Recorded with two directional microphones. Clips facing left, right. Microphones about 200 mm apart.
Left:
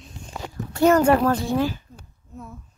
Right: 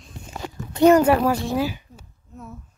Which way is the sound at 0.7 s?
20° right (ahead or behind).